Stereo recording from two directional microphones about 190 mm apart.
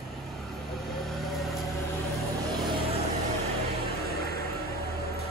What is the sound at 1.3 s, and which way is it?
Vehicle, centre (ahead or behind).